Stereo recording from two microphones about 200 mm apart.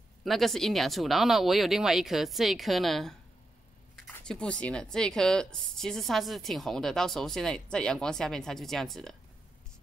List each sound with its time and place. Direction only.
0.2 s a woman's voice: centre (ahead or behind)